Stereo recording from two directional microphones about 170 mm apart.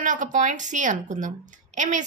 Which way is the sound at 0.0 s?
50° right (ahead or behind).